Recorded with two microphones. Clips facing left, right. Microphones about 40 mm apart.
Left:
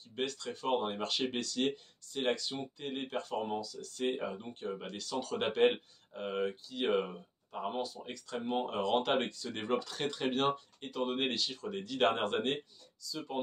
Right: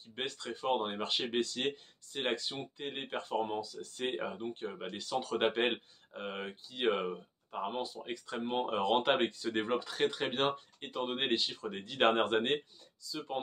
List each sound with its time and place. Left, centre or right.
0.1 s speech: centre
4.0 s speech: centre
7.7 s speech: right